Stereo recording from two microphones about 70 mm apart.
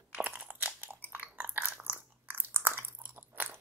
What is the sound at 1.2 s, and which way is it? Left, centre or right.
Biting, right.